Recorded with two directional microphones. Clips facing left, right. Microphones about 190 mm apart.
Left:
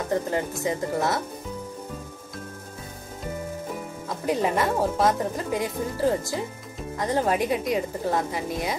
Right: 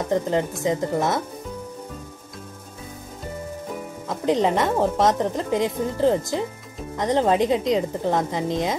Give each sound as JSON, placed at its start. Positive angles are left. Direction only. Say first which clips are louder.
{"t": 0.1, "sound": "a woman's voice", "louder": "right 4 dB", "side_deg": -20}
{"t": 4.3, "sound": "a woman's voice", "louder": "right 3 dB", "side_deg": -20}